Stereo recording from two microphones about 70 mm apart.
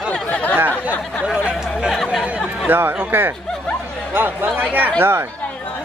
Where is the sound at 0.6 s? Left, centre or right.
Right.